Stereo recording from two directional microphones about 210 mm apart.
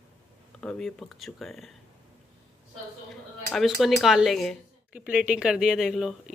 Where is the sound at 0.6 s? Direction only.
5° left (ahead or behind).